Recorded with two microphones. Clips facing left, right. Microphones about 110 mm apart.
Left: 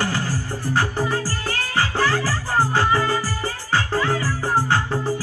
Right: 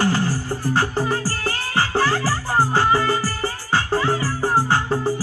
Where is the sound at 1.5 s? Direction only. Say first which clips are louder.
Right 1 dB; 20° right (ahead or behind).